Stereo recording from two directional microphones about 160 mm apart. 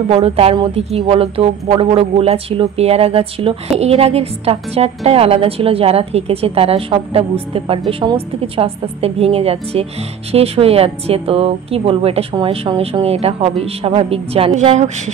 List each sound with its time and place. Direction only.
0.1 s a woman's voice: 40° right (ahead or behind)